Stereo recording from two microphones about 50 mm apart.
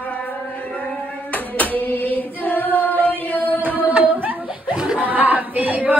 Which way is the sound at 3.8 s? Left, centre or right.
Right.